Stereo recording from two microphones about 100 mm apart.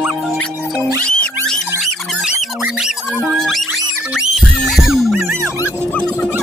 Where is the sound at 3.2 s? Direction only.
5° left (ahead or behind).